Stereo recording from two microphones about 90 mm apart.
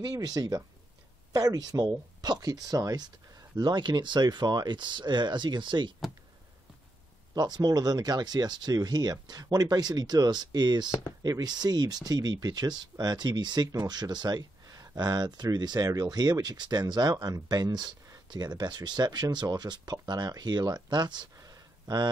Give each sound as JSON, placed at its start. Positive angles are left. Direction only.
{"t": 0.0, "sound": "speech", "side_deg": -45}
{"t": 7.3, "sound": "speech", "side_deg": -45}
{"t": 21.4, "sound": "a sound", "side_deg": -45}